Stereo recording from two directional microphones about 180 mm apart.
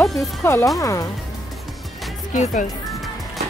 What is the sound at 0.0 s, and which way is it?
Music, centre (ahead or behind).